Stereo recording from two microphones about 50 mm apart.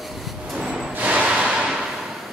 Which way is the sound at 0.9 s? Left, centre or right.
Right.